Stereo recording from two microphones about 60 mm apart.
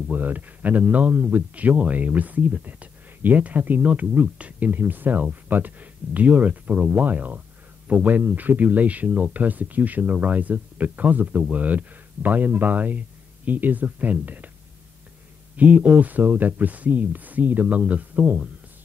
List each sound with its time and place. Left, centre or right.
0.1 s speech: right
15.5 s speech: right